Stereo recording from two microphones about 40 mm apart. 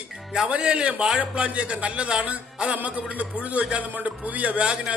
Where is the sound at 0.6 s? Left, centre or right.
Right.